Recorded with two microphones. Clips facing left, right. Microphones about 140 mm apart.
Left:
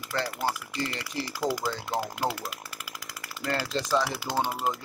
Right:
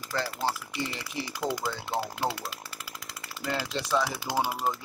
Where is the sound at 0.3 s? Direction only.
25° right (ahead or behind).